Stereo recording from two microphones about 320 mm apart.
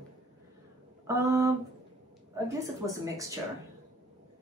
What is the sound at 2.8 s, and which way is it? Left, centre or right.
Speech, centre.